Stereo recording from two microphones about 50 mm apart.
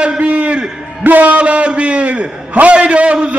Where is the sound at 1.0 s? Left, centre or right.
Right.